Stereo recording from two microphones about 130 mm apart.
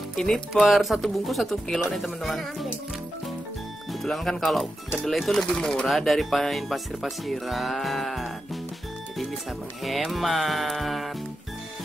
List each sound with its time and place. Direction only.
0.1 s music: 5° left (ahead or behind)
0.5 s speech: centre (ahead or behind)
4.0 s speech: centre (ahead or behind)
9.8 s speech: centre (ahead or behind)